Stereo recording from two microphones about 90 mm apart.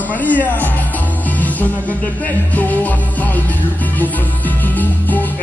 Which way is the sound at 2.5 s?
15° left (ahead or behind).